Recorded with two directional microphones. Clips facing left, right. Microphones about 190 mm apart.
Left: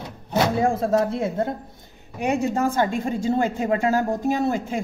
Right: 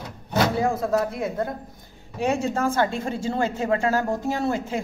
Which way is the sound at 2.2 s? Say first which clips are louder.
Left 1 dB; 15° left (ahead or behind).